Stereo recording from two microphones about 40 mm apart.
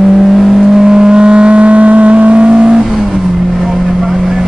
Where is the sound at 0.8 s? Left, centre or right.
Centre.